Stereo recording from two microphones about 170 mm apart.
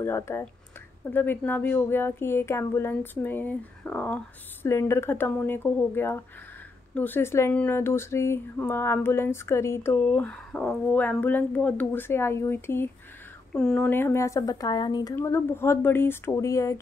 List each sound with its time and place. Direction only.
0.0 s speech: 15° left (ahead or behind)
15.1 s speech: 15° left (ahead or behind)